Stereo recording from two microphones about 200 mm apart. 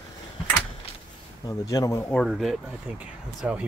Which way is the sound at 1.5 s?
20° left (ahead or behind).